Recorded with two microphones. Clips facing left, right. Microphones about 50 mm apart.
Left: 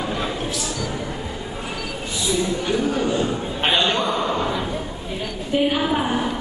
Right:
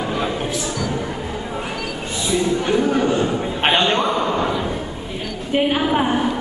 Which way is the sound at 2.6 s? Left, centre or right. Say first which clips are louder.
Right 4 dB; right.